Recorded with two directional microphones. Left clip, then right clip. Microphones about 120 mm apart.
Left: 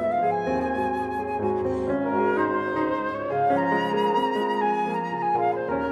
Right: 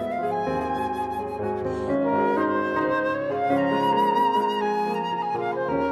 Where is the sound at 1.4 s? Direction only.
15° right (ahead or behind).